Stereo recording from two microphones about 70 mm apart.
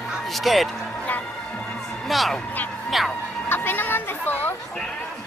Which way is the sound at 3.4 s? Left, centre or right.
Left.